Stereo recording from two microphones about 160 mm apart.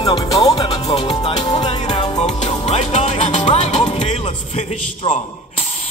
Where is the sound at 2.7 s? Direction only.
45° left (ahead or behind).